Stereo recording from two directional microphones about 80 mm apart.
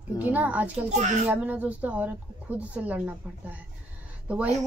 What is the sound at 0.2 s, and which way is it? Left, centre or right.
Speech, right.